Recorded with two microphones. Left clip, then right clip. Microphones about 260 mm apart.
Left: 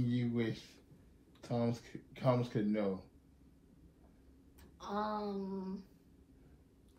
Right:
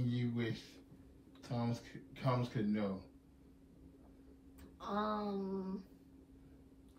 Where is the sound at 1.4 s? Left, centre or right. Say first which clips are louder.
Left 5 dB; left.